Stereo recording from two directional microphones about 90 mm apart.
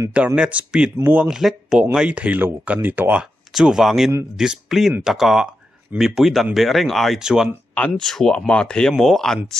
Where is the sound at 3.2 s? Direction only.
5° right (ahead or behind).